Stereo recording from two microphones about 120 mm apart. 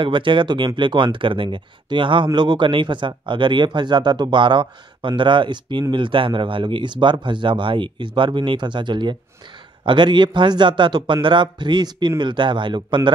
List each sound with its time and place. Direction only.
0.0 s speech: 45° right (ahead or behind)